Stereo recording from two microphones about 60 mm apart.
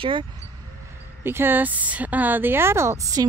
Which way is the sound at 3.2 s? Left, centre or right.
Right.